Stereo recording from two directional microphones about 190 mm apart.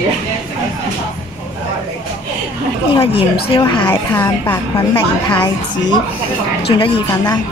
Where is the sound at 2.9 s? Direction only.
30° left (ahead or behind).